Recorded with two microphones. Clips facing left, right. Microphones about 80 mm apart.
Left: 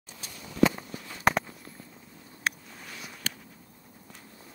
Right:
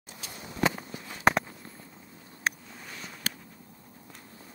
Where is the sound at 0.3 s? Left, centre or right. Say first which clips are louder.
Left 4 dB; right.